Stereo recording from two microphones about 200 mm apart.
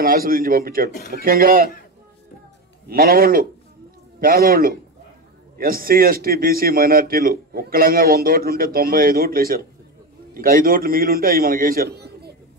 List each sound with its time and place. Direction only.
0.0 s speech: 45° right (ahead or behind)
2.9 s speech: 45° right (ahead or behind)